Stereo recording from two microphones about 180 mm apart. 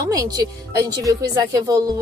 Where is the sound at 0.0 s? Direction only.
20° right (ahead or behind).